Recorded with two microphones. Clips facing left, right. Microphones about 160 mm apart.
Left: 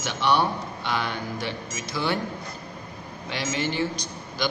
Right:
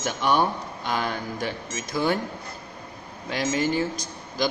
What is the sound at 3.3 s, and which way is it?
Speech, 45° right (ahead or behind).